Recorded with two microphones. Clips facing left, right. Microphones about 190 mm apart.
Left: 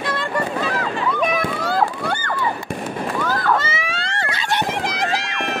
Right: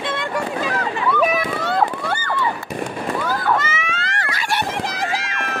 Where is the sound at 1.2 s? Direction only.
5° right (ahead or behind).